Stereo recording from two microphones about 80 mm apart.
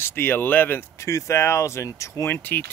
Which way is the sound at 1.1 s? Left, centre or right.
Left.